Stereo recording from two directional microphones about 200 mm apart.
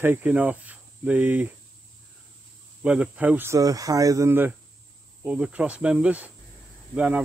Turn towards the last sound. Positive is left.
turn(degrees=-5)  # may be behind; listen again after turning